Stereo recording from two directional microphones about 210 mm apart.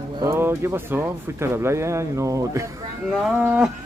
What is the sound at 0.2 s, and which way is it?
Speech, 15° right (ahead or behind).